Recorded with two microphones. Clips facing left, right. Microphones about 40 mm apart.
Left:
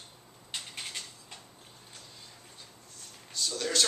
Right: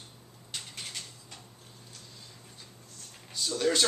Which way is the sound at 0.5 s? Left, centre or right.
Centre.